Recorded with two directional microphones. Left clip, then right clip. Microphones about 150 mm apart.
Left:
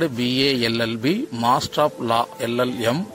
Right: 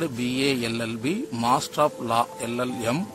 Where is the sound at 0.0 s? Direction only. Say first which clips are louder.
Left 5 dB; 15° left (ahead or behind).